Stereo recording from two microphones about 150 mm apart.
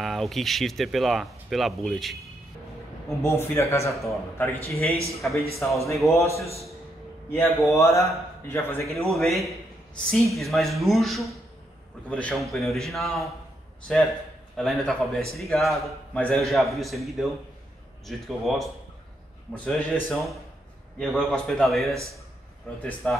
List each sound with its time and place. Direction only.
0.0 s speech: centre (ahead or behind)
3.2 s speech: 20° left (ahead or behind)
3.9 s speech: centre (ahead or behind)
4.4 s speech: 15° left (ahead or behind)
9.1 s speech: centre (ahead or behind)
23.0 s speech: 10° left (ahead or behind)